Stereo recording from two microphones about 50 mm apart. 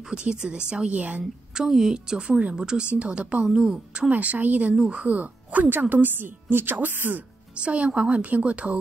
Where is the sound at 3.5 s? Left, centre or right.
Centre.